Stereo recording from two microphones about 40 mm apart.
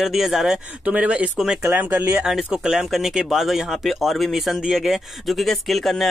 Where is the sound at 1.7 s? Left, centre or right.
Right.